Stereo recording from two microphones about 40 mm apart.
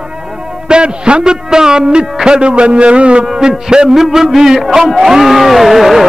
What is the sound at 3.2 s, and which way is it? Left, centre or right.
Music, centre.